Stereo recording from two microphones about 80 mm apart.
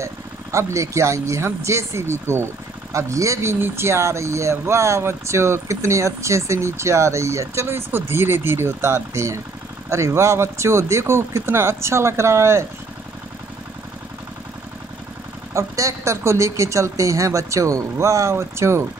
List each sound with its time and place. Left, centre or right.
0.0 s speech: right
15.5 s speech: right